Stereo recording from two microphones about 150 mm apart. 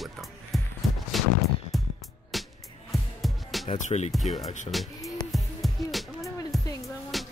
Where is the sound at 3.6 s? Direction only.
55° left (ahead or behind).